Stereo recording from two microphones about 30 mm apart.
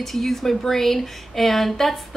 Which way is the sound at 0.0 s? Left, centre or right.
Centre.